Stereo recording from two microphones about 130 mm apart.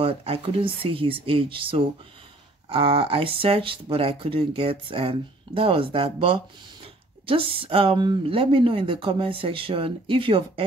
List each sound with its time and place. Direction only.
0.0 s speech: 45° right (ahead or behind)